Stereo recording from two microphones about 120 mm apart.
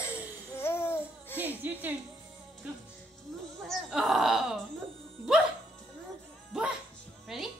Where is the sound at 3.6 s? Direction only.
Centre (ahead or behind).